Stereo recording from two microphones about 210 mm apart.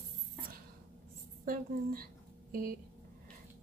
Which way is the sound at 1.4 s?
45° right (ahead or behind).